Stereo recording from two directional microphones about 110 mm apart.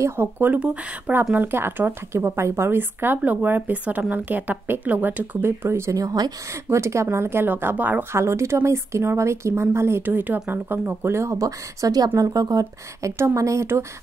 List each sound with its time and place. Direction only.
0.0 s a woman's voice: 20° right (ahead or behind)